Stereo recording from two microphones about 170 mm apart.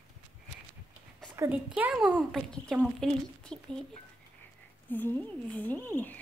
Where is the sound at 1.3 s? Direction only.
15° right (ahead or behind).